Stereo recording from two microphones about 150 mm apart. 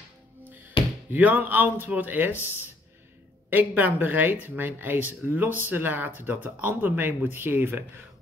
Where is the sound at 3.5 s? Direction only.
10° right (ahead or behind).